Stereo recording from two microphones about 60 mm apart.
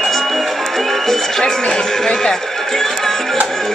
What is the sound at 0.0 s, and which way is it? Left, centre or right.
Music, centre.